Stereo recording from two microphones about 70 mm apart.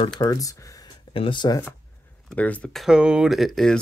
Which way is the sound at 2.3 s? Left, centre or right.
Left.